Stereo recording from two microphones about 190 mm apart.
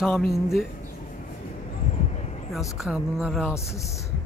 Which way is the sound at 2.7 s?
Centre (ahead or behind).